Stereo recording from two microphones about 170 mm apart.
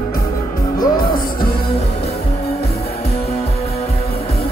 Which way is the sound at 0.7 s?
60° left (ahead or behind).